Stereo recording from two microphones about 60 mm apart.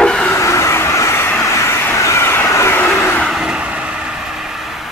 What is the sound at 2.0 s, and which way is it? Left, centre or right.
Train, left.